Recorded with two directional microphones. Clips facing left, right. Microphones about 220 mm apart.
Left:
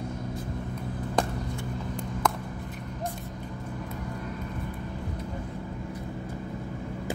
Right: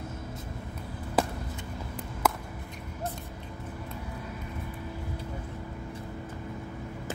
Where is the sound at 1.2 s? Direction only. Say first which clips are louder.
Even; 5° right (ahead or behind).